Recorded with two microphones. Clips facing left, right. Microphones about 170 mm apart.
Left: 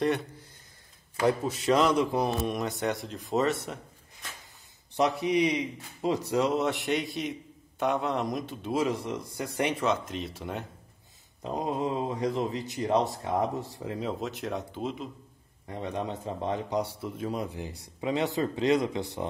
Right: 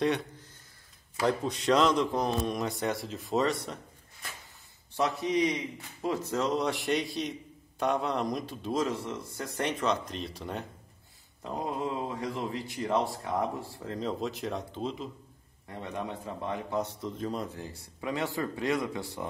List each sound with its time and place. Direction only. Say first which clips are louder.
1.2 s a man's voice: left 2 dB; 5° left (ahead or behind)
4.9 s a man's voice: left 3 dB; 15° left (ahead or behind)
8.8 s speech: left 3 dB; 15° left (ahead or behind)
11.4 s speech: left 3 dB; 20° left (ahead or behind); by 15.0 s 5° left (ahead or behind)
15.7 s speech: left 3 dB; 20° left (ahead or behind)
17.2 s speech: left 3 dB; 10° left (ahead or behind)